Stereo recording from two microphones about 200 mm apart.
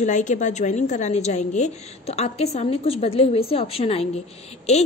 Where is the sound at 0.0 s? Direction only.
35° left (ahead or behind).